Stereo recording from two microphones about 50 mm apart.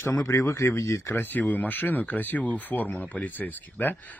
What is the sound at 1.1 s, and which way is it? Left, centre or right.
Speech, left.